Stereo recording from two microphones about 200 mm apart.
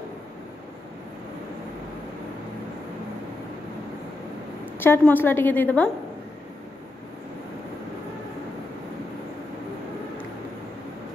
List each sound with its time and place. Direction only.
4.7 s a woman's voice: 10° left (ahead or behind)